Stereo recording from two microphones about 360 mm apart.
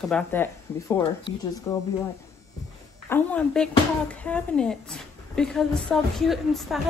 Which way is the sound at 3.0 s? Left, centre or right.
Centre.